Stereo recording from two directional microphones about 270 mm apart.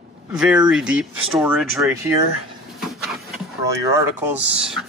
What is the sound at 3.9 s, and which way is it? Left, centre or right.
Speech, centre.